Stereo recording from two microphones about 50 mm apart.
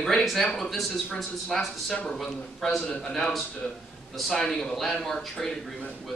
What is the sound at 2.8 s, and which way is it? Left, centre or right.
Speech, left.